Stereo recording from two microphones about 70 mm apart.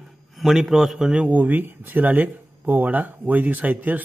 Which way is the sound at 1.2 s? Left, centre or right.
Right.